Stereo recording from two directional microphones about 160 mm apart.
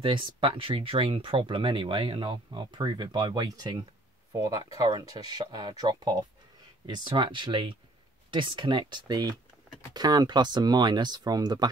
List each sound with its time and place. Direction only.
0.0 s speech: 30° right (ahead or behind)